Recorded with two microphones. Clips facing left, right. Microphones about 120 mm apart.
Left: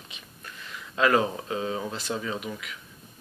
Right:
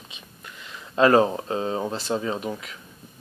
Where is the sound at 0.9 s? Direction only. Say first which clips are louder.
Right 6 dB; 35° right (ahead or behind).